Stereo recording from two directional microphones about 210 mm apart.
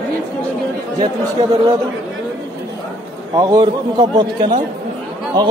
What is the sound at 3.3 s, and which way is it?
A man's voice, 20° right (ahead or behind).